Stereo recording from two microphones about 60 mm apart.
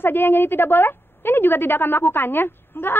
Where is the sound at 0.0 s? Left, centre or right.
Left.